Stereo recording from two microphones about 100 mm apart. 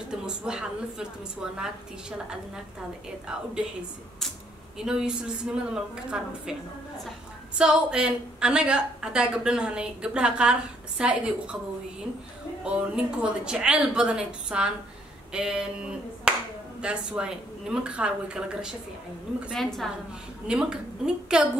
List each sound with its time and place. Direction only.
0.1 s a woman's voice: 10° right (ahead or behind)
4.7 s a woman's voice: 5° right (ahead or behind)
7.5 s a woman's voice: 10° right (ahead or behind)
12.6 s a woman's voice: 10° right (ahead or behind)
20.4 s a woman's voice: 10° right (ahead or behind)